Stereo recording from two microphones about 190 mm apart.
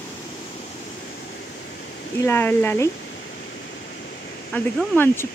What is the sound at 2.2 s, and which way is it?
Speech, 10° left (ahead or behind).